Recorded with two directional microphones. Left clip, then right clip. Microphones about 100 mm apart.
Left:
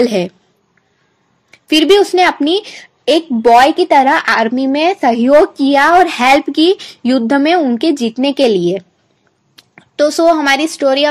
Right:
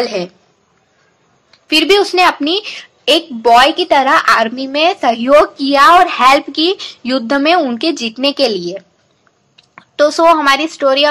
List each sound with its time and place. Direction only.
1.5 s a woman's voice: 30° left (ahead or behind)